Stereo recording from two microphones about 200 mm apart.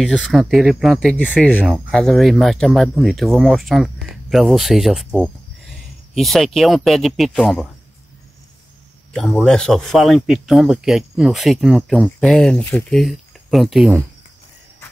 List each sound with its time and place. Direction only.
0.0 s speech: 5° left (ahead or behind)
9.1 s speech: centre (ahead or behind)